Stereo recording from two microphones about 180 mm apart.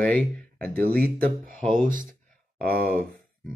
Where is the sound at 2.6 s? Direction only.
55° right (ahead or behind).